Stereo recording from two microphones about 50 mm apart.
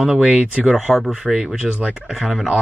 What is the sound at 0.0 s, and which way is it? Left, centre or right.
Speech, centre.